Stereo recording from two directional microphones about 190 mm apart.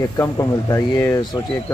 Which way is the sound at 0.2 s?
15° left (ahead or behind).